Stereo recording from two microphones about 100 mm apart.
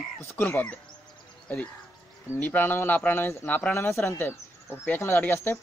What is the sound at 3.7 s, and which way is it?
Speech, 25° left (ahead or behind).